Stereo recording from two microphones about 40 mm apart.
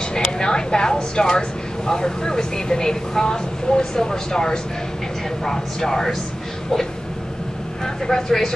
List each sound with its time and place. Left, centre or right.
0.1 s a woman's voice: centre
7.8 s a woman's voice: centre